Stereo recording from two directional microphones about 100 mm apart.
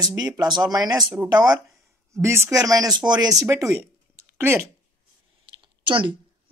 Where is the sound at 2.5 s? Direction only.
35° right (ahead or behind).